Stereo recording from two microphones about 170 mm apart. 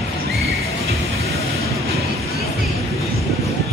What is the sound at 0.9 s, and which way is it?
Vehicle, 40° left (ahead or behind).